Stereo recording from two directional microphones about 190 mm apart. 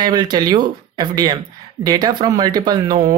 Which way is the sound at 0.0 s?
20° right (ahead or behind).